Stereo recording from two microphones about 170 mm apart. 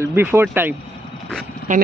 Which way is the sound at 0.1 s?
10° right (ahead or behind).